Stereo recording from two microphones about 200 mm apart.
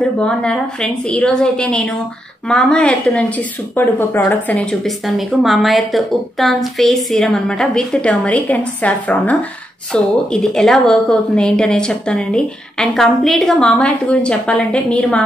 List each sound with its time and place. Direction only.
0.2 s speech: 5° left (ahead or behind)